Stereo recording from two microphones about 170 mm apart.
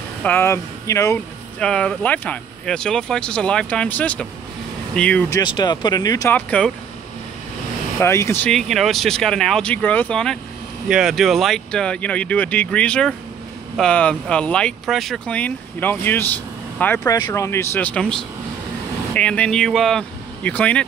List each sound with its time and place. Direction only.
0.2 s speech: 15° left (ahead or behind)
1.6 s speech: 5° left (ahead or behind)
5.3 s speech: 25° left (ahead or behind)
6.3 s speech: 5° left (ahead or behind)
8.0 s speech: 15° left (ahead or behind)
8.5 s speech: centre (ahead or behind)